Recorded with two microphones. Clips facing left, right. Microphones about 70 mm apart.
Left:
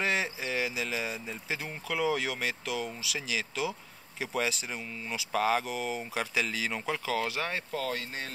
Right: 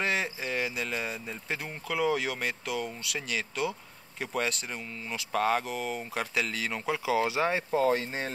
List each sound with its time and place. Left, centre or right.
0.0 s speech: centre
7.0 s speech: centre; by 8.3 s right